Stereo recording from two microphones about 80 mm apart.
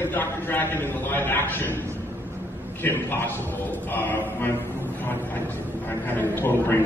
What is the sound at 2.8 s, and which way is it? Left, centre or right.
A man's voice, left.